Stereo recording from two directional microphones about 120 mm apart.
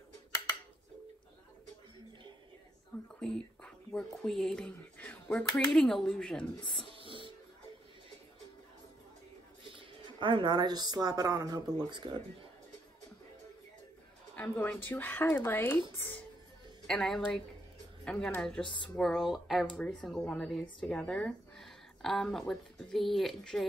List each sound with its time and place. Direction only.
3.2 s speech: 5° left (ahead or behind)
6.9 s a sound: 45° right (ahead or behind)
9.8 s speech: 45° right (ahead or behind)
14.3 s speech: 15° left (ahead or behind)
16.8 s speech: 5° left (ahead or behind)
19.6 s speech: 10° left (ahead or behind)